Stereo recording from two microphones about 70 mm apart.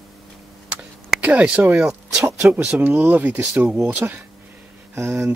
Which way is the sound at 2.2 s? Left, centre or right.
Right.